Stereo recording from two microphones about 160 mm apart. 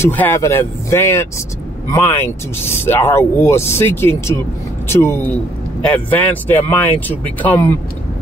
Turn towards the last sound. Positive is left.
turn(degrees=15)  # may be behind; listen again after turning